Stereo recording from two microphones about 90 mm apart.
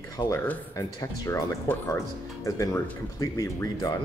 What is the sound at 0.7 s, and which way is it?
Speech, 40° left (ahead or behind).